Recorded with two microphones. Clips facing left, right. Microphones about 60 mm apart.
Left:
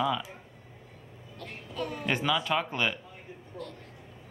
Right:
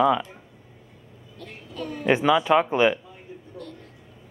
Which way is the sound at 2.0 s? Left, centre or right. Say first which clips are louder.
Right 10 dB; centre.